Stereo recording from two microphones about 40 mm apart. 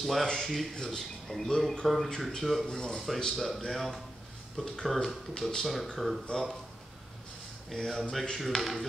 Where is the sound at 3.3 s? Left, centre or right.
Centre.